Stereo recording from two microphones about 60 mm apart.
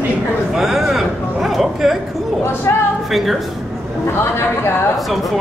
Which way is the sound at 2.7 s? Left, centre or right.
Left.